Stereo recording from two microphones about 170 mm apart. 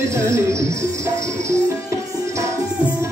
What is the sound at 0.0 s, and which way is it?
Music, 15° right (ahead or behind).